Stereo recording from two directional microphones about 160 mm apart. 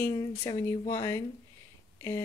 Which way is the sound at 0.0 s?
25° left (ahead or behind).